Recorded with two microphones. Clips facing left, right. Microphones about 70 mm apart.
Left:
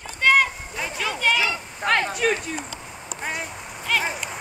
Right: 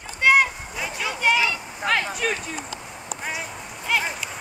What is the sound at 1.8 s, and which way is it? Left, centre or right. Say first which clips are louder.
Speech: left 2 dB; centre.